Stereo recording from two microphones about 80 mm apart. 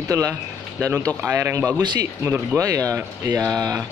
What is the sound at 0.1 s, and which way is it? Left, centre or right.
Speech, right.